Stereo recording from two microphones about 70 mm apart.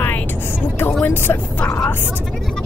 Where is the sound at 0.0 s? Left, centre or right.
Left.